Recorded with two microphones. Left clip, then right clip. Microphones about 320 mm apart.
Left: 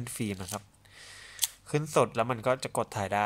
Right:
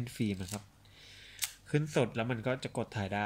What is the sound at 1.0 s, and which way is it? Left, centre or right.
Camera, centre.